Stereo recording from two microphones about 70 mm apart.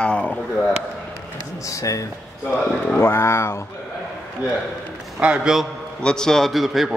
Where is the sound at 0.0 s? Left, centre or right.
Centre.